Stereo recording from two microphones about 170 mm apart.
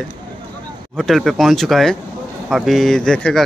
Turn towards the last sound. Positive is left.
turn(degrees=5)  # may be behind; listen again after turning